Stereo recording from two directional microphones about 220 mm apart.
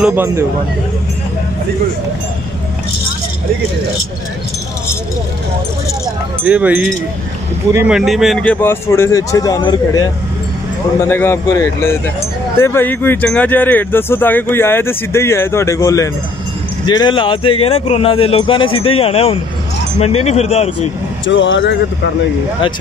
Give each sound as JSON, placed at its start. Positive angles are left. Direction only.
{"t": 0.0, "sound": "speech", "side_deg": -10}
{"t": 6.4, "sound": "speech", "side_deg": -5}
{"t": 21.3, "sound": "speech", "side_deg": 55}